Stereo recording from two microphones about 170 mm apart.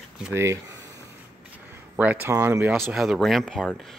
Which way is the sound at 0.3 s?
15° right (ahead or behind).